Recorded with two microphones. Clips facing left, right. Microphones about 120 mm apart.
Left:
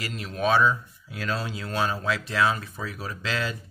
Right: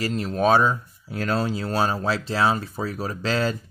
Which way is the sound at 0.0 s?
40° right (ahead or behind).